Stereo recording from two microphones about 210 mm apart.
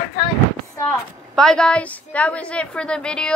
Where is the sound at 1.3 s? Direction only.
5° left (ahead or behind).